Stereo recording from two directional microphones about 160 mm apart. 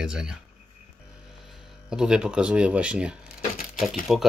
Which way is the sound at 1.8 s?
5° right (ahead or behind).